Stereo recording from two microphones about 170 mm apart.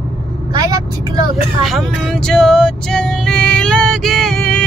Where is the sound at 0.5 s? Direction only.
20° right (ahead or behind).